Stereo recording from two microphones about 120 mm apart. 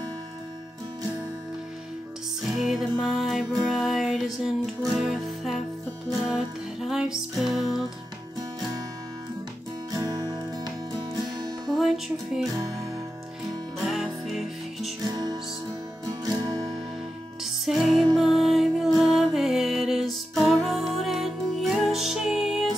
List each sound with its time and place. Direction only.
2.5 s music: 5° right (ahead or behind)
9.8 s music: 30° right (ahead or behind)
11.6 s music: centre (ahead or behind)
12.5 s music: 30° right (ahead or behind)
13.8 s music: centre (ahead or behind)
15.0 s music: 30° right (ahead or behind)
17.4 s music: 5° right (ahead or behind)